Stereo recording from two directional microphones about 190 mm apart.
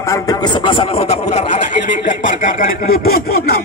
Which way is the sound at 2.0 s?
45° left (ahead or behind).